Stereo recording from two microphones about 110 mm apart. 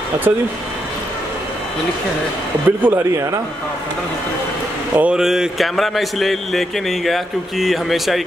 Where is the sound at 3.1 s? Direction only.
30° right (ahead or behind).